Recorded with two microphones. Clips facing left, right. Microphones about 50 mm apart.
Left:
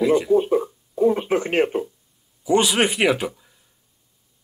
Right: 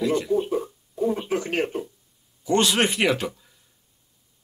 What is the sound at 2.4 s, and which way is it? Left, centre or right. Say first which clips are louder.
Speech: left 2 dB; centre.